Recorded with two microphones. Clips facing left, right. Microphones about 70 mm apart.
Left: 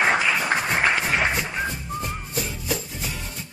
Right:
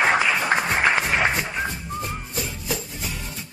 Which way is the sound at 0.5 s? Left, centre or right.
Centre.